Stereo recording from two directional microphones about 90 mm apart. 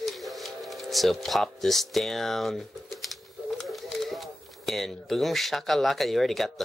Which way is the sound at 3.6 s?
Centre (ahead or behind).